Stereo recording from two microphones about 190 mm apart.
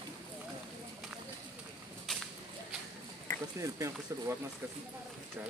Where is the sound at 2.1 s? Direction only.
Centre (ahead or behind).